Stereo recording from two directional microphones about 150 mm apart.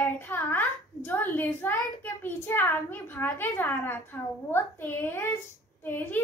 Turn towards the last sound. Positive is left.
turn(degrees=15)  # may be behind; listen again after turning